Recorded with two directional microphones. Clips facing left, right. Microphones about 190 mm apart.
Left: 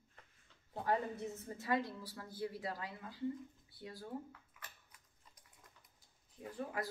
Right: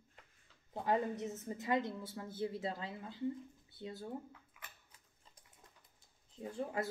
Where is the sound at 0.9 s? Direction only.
20° right (ahead or behind).